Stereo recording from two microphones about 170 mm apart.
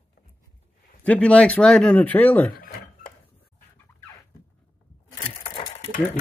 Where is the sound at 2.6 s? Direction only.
55° left (ahead or behind).